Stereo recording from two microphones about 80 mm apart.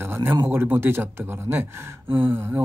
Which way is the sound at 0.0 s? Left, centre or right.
Right.